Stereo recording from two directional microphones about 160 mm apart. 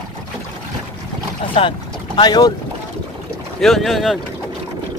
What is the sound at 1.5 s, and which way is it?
Speech, 35° left (ahead or behind).